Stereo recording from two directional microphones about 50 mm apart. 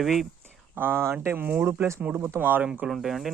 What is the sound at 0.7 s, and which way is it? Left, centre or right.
A man's voice, right.